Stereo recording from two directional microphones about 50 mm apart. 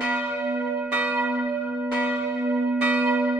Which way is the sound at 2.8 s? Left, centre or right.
Right.